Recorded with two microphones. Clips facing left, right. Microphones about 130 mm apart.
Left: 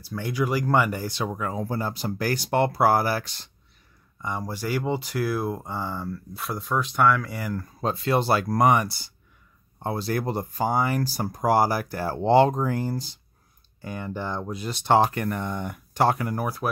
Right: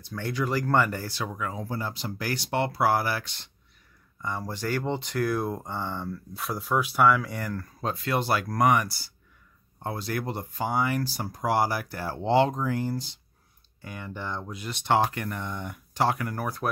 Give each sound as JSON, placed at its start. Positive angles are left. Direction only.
{"t": 0.0, "sound": "speech", "side_deg": 10}
{"t": 1.2, "sound": "speech", "side_deg": 35}
{"t": 4.2, "sound": "speech", "side_deg": 15}
{"t": 7.8, "sound": "speech", "side_deg": 30}
{"t": 16.3, "sound": "speech", "side_deg": 10}